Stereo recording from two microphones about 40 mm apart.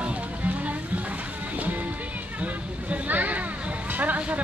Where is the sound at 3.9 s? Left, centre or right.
Right.